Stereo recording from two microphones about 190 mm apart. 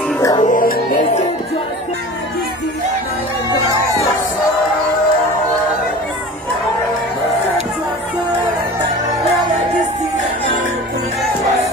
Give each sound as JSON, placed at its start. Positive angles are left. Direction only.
{"t": 0.4, "sound": "music", "side_deg": 45}